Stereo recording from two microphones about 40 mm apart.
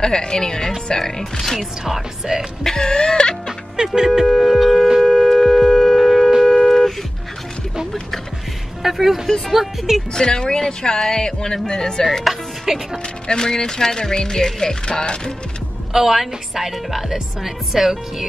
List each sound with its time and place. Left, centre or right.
0.0 s speech: centre
1.4 s speech: centre
1.9 s a woman's voice: centre
2.6 s throat clearing: centre
3.7 s a woman's voice: centre
4.8 s music: centre
8.8 s a woman's voice: centre
10.1 s throat clearing: centre
10.6 s speech: centre
12.3 s a woman's voice: centre
13.3 s speech: centre
15.9 s a woman's voice: centre